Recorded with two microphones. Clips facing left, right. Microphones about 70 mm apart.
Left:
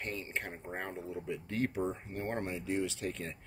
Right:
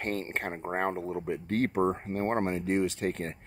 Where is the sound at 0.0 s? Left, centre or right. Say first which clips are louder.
Right 7 dB; right.